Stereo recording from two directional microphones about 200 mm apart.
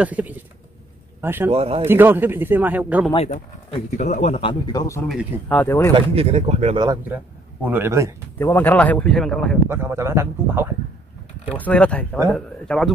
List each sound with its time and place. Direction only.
0.0 s a man's voice: 10° right (ahead or behind)
1.5 s speech: 30° right (ahead or behind)
1.9 s a man's voice: 10° right (ahead or behind)
3.7 s speech: 35° left (ahead or behind); by 5.0 s 15° left (ahead or behind)
5.0 s speech: 5° left (ahead or behind)
5.9 s speech: 30° right (ahead or behind)
7.6 s a man's voice: 10° right (ahead or behind)
8.4 s speech: 10° left (ahead or behind)
9.7 s a man's voice: 10° right (ahead or behind)
11.5 s speech: 5° left (ahead or behind)